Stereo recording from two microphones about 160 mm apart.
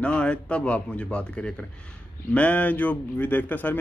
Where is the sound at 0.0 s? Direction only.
5° left (ahead or behind).